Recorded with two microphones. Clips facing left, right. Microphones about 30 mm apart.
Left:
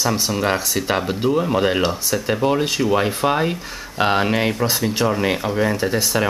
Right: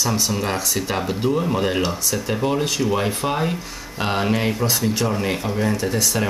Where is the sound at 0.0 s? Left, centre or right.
Centre.